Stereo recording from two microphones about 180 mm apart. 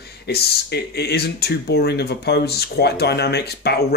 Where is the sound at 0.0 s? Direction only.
65° left (ahead or behind).